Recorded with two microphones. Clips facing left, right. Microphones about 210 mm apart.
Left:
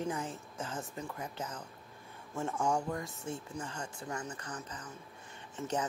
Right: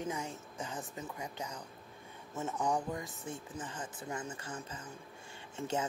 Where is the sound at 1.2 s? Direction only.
15° right (ahead or behind).